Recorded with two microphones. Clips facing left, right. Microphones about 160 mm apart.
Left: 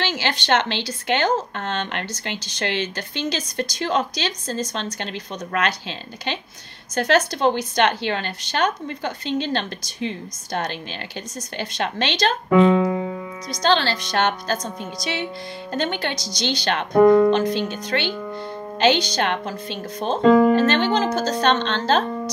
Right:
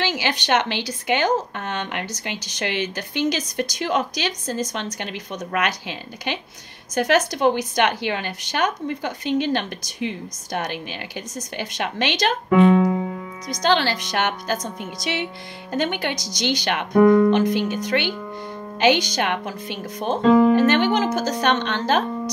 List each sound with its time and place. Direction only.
0.0 s speech: 15° right (ahead or behind)
13.5 s speech: 15° right (ahead or behind)
16.9 s speech: 45° left (ahead or behind)
17.3 s speech: 15° right (ahead or behind)